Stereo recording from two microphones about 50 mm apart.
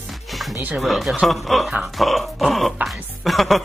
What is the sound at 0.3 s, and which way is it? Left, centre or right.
Music, centre.